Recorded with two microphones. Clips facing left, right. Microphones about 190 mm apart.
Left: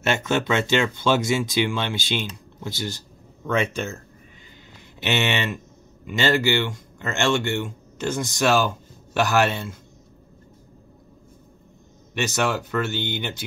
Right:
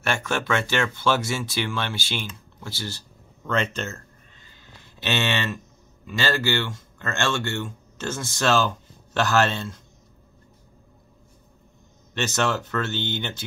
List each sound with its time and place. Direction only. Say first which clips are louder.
0.0 s speech: left 4 dB; 20° left (ahead or behind)
5.0 s speech: left 2 dB; 15° left (ahead or behind)
12.1 s speech: left 1 dB; 10° left (ahead or behind)